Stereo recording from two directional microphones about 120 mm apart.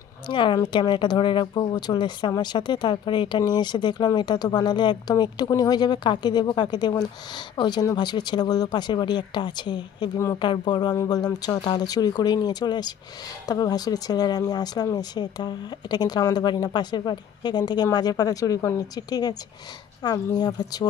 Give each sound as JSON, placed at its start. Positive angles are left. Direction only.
{"t": 0.3, "sound": "a woman's voice", "side_deg": 45}